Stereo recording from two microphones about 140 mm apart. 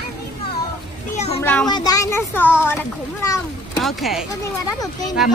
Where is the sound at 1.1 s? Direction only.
50° left (ahead or behind).